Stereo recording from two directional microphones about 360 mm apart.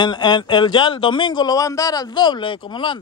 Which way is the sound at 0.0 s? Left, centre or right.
Centre.